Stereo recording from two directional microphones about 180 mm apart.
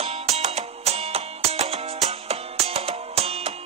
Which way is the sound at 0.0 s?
35° right (ahead or behind).